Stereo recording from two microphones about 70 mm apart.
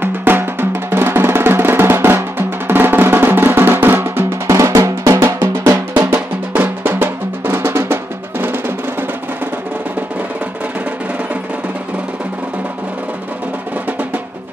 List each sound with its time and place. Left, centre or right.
0.0 s drum: right
4.6 s drum: right